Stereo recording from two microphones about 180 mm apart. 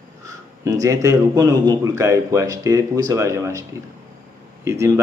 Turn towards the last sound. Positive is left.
turn(degrees=-15)  # may be behind; listen again after turning